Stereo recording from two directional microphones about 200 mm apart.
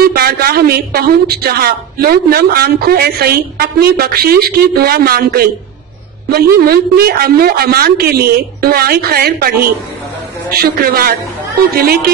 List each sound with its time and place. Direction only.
0.0 s speech: 50° right (ahead or behind)